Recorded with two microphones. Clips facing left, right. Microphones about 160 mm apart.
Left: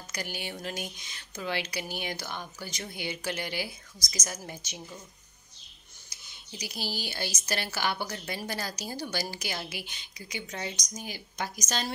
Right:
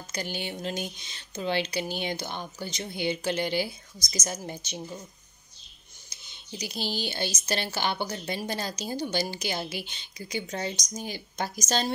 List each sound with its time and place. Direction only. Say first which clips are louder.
0.1 s speech: right 4 dB; 25° right (ahead or behind)
6.0 s speech: right 5 dB; 25° right (ahead or behind)